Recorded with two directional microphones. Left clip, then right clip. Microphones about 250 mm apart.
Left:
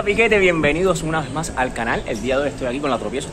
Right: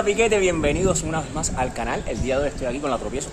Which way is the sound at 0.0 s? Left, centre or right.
Centre.